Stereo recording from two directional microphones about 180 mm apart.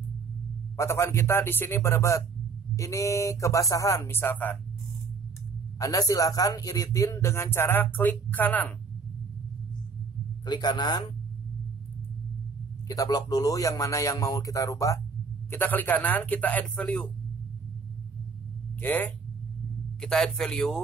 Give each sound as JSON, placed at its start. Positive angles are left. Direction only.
{"t": 0.7, "sound": "speech", "side_deg": 15}
{"t": 5.8, "sound": "speech", "side_deg": 20}
{"t": 10.4, "sound": "a man's voice", "side_deg": 25}
{"t": 12.8, "sound": "a man's voice", "side_deg": 20}
{"t": 18.8, "sound": "speech", "side_deg": 10}